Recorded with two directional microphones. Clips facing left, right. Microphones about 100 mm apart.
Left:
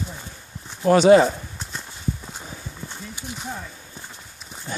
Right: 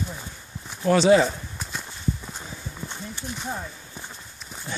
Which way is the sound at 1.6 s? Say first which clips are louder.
Right 1 dB; centre (ahead or behind).